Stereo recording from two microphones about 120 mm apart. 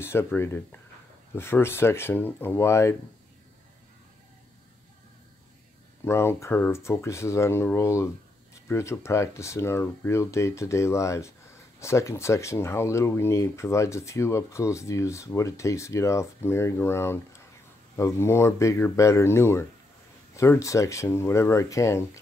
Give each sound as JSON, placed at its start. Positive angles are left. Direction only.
{"t": 0.0, "sound": "speech", "side_deg": 20}
{"t": 6.0, "sound": "speech", "side_deg": 20}